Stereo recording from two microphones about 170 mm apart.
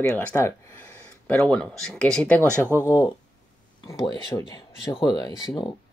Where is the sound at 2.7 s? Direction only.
20° left (ahead or behind).